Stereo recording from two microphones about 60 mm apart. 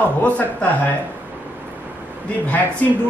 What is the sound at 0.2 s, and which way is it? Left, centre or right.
Speech, left.